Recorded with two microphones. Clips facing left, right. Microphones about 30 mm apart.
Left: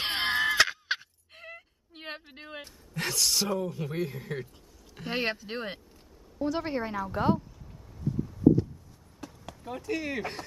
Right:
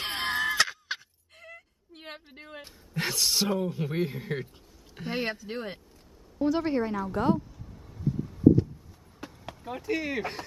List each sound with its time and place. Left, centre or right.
0.1 s a sound: centre
2.6 s speech: centre
3.4 s a man's voice: right
5.1 s speech: left
6.3 s a woman's voice: centre
6.6 s speech: centre
7.3 s a sound: centre
7.8 s vehicle: centre
9.2 s speech: right; by 10.4 s centre